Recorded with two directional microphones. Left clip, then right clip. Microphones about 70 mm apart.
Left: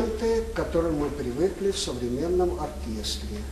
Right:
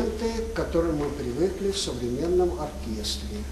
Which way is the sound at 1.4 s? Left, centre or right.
Centre.